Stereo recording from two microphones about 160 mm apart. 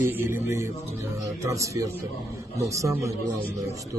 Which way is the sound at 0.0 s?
15° right (ahead or behind).